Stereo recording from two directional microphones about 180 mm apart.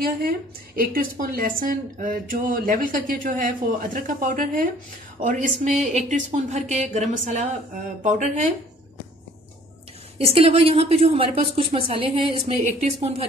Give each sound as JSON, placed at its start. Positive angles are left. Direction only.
{"t": 0.0, "sound": "a woman's voice", "side_deg": -55}
{"t": 10.1, "sound": "a woman's voice", "side_deg": -35}